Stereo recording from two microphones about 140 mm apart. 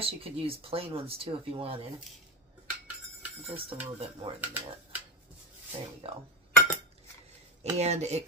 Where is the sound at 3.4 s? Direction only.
40° right (ahead or behind).